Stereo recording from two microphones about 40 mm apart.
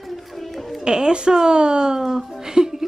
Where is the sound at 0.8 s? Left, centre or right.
Centre.